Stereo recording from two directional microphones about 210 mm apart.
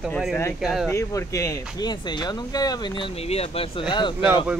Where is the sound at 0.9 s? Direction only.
15° left (ahead or behind).